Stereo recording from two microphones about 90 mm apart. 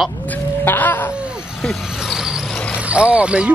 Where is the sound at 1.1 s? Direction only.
10° right (ahead or behind).